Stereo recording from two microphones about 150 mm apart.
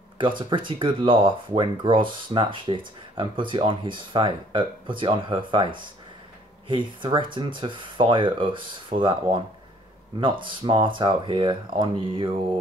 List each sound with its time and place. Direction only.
0.4 s speech: 35° right (ahead or behind)